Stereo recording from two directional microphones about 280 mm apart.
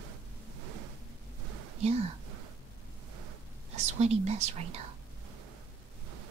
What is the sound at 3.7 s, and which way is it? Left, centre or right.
Speech, right.